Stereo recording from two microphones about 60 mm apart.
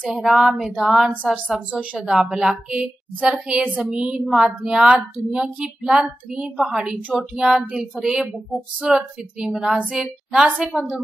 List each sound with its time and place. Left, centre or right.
0.2 s a woman's voice: centre
1.1 s a woman's voice: right
2.0 s a woman's voice: centre
6.9 s a woman's voice: centre